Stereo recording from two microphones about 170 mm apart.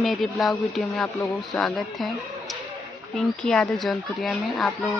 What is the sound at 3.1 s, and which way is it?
Speech, 5° left (ahead or behind).